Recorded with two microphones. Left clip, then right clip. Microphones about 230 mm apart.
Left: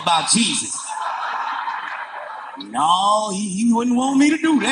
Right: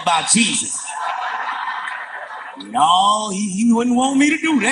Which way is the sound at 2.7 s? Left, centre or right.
Right.